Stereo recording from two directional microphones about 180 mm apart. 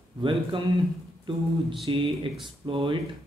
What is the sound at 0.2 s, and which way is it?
Speech, 30° right (ahead or behind).